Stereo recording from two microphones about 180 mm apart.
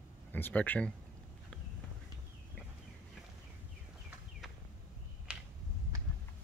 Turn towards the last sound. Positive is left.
turn(degrees=-5)  # may be behind; listen again after turning